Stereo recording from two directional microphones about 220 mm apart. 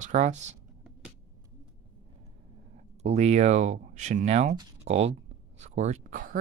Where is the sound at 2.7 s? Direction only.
30° right (ahead or behind).